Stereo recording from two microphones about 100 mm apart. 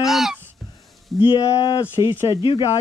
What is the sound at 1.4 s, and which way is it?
Speech, 35° left (ahead or behind).